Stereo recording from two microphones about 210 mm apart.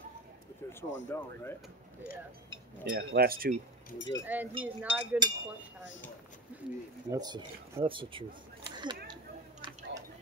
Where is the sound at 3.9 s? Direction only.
60° left (ahead or behind).